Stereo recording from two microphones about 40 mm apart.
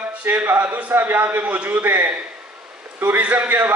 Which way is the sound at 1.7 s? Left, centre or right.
Right.